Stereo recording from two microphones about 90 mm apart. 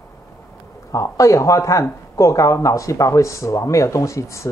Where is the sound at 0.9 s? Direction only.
35° left (ahead or behind).